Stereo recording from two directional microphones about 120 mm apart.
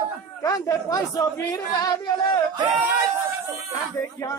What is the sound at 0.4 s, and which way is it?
Speech, 30° left (ahead or behind).